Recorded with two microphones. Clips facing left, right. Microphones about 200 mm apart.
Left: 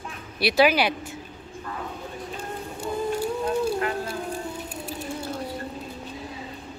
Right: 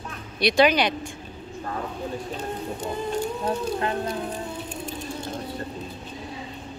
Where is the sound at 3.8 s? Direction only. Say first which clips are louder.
Right 1 dB; 25° right (ahead or behind).